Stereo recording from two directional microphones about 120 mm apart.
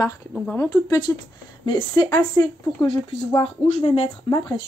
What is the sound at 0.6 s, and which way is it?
Speech, 30° left (ahead or behind).